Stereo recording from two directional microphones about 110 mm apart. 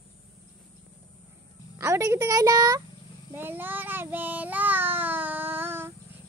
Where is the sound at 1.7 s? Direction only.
30° right (ahead or behind).